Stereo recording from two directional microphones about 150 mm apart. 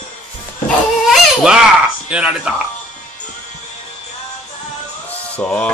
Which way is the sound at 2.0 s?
5° right (ahead or behind).